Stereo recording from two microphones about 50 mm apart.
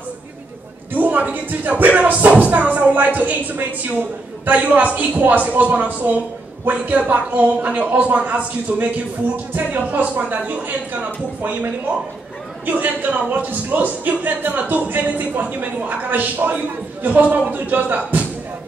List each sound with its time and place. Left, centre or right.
0.9 s speech: right
12.6 s speech: right